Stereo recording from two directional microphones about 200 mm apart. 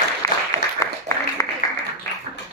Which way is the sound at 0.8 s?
15° left (ahead or behind).